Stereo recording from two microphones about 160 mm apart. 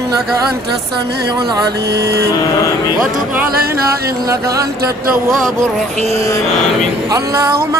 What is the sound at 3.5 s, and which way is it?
Music, 70° right (ahead or behind).